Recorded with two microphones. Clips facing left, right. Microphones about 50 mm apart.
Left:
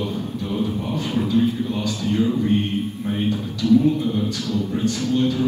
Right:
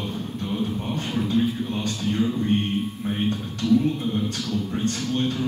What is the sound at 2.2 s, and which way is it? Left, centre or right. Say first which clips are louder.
Speech: left 4 dB; left.